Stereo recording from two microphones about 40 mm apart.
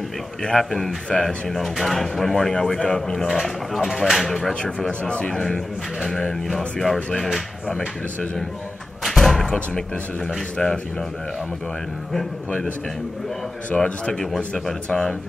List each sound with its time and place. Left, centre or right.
0.6 s speech: centre
2.8 s speech: centre
3.3 s speech: centre
5.0 s speech: left
5.3 s speech: centre
9.0 s door: centre
10.6 s speech: centre
13.7 s speech: centre